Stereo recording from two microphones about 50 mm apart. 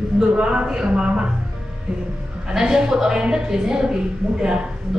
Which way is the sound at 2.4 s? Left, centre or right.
Centre.